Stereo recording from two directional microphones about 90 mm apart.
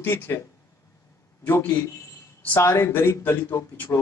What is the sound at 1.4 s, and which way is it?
A man's voice, 25° left (ahead or behind).